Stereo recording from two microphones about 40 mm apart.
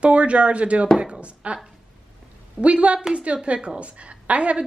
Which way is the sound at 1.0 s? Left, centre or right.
Right.